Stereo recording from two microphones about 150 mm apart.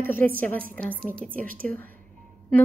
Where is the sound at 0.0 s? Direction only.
15° left (ahead or behind).